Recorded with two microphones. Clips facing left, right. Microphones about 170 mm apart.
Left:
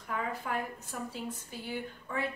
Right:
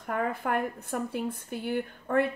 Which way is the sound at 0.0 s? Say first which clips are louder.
Right 6 dB; 55° right (ahead or behind).